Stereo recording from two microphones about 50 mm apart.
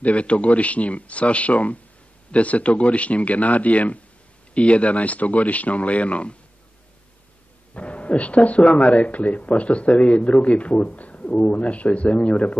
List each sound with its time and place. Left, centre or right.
0.0 s speech: left
7.7 s speech: left